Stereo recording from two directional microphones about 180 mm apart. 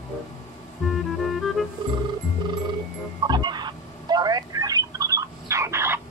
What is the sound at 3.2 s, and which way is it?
Fowl, 25° right (ahead or behind).